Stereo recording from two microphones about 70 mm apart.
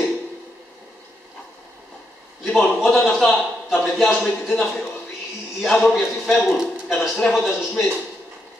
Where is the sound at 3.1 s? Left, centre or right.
Centre.